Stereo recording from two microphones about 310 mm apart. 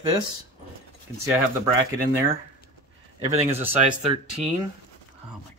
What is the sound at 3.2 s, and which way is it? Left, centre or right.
Speech, centre.